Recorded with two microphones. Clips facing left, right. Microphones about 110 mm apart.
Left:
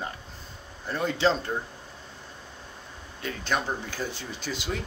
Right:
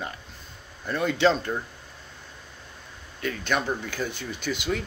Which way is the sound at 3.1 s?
30° left (ahead or behind).